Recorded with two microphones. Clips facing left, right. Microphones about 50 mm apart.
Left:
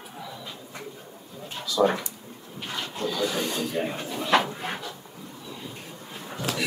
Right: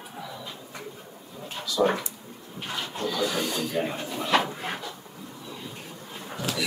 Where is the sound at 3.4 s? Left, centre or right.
Left.